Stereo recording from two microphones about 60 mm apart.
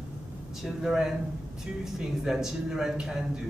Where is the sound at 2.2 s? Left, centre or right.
Centre.